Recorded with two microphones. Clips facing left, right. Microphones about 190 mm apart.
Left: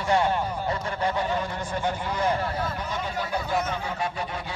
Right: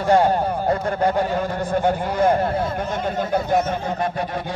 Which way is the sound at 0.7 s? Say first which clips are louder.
Right 8 dB; 55° right (ahead or behind).